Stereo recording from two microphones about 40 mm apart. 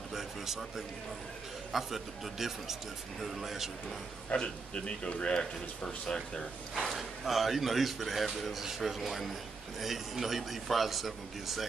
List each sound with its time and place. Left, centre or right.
0.1 s a sound: centre
1.7 s speech: centre
4.3 s a man's voice: left
6.9 s speech: centre